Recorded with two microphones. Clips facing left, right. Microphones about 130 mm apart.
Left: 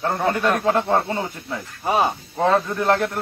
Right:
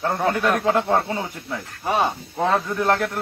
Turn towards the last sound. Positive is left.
turn(degrees=0)  # may be behind; listen again after turning